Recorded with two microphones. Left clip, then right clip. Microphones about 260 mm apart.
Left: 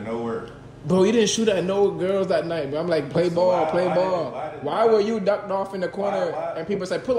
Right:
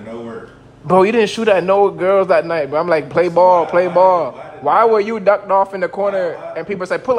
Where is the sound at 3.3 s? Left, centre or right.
Right.